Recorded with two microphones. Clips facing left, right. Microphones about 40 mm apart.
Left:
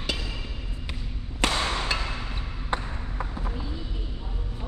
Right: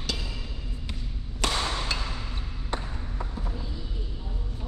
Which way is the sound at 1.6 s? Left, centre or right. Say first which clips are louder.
Left 3 dB; left.